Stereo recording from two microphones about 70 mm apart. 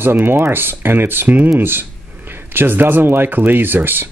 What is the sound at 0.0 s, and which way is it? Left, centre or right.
Speech, right.